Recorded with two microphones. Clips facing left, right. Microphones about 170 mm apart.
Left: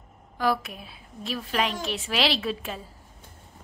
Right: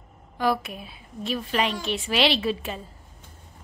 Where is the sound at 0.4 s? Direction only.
Centre (ahead or behind).